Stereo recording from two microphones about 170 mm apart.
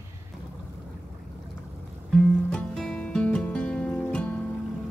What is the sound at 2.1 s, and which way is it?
Music, 5° left (ahead or behind).